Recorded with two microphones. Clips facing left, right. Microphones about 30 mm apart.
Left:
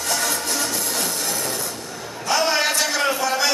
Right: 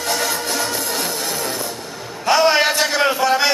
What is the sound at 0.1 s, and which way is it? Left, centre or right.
Music, right.